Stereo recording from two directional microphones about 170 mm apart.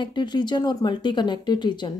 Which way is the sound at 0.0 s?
25° left (ahead or behind).